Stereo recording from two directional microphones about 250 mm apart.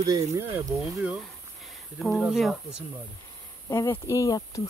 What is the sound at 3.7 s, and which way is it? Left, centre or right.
Speech, centre.